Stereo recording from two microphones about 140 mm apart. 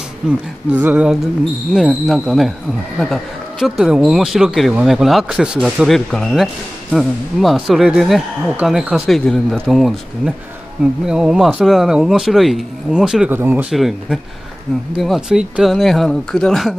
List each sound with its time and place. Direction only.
0.7 s speech: 10° right (ahead or behind)
13.3 s speech: 15° right (ahead or behind)
13.7 s speech: 5° right (ahead or behind)